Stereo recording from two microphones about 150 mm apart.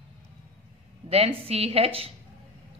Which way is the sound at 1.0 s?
40° right (ahead or behind).